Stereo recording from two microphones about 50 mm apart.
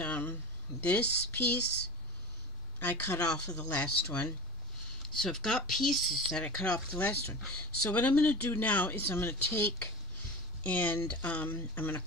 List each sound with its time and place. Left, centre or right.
0.0 s speech: left
3.2 s speech: left
5.1 s speech: centre
6.3 s speech: left
9.1 s speech: left
9.5 s speech: left